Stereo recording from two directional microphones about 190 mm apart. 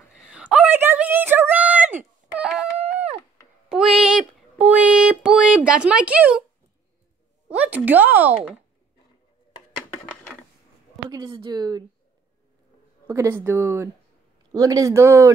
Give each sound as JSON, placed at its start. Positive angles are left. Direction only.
{"t": 0.1, "sound": "a sound", "side_deg": -5}
{"t": 7.4, "sound": "speech", "side_deg": -10}
{"t": 11.1, "sound": "speech", "side_deg": -20}
{"t": 13.0, "sound": "speech", "side_deg": -15}